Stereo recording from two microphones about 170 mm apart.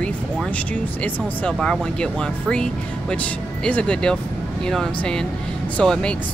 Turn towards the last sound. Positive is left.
turn(degrees=5)  # may be behind; listen again after turning